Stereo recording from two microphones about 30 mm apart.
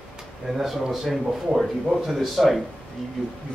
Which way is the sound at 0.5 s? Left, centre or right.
Centre.